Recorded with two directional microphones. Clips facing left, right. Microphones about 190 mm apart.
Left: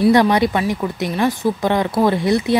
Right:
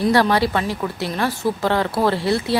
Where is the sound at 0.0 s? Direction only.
20° left (ahead or behind).